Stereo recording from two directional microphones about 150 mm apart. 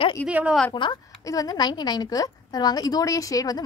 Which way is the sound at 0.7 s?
30° left (ahead or behind).